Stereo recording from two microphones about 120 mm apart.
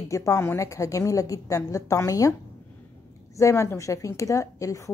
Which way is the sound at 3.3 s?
25° left (ahead or behind).